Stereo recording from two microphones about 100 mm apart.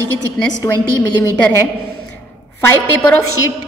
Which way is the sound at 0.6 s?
35° left (ahead or behind).